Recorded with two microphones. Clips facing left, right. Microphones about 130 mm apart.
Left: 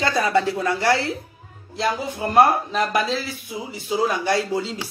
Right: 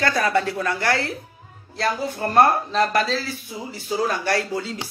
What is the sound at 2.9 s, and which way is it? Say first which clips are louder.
Speech: even; 20° left (ahead or behind).